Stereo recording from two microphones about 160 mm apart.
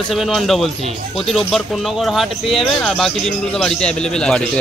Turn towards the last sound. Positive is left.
turn(degrees=5)  # may be behind; listen again after turning